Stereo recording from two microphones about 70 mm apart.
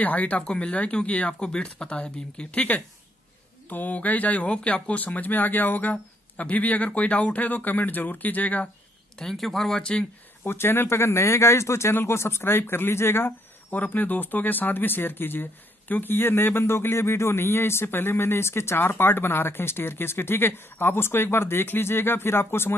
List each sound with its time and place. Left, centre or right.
0.0 s speech: left
9.2 s speech: centre
10.4 s a man's voice: left